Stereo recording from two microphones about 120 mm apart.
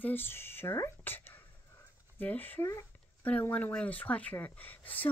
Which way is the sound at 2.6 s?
25° left (ahead or behind).